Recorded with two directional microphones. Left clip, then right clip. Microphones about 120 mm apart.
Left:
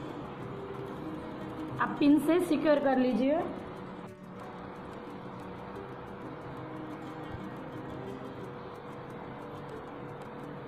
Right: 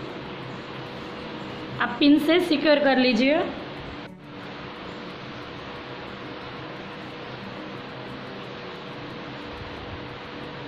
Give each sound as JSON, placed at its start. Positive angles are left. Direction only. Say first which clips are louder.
{"t": 1.8, "sound": "a woman's voice", "louder": "right 6 dB", "side_deg": -5}
{"t": 2.9, "sound": "a woman's voice", "louder": "right 8 dB", "side_deg": -20}